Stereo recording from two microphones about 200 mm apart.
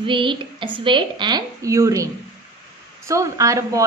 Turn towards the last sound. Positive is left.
turn(degrees=-15)  # may be behind; listen again after turning